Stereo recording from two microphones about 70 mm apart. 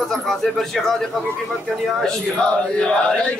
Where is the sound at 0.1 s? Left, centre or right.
Centre.